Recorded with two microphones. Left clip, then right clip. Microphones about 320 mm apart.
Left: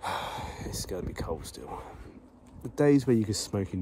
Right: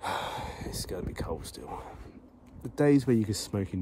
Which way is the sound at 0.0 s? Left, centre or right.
Centre.